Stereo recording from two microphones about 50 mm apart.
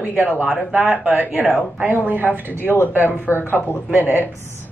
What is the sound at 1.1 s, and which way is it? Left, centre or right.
A woman's voice, right.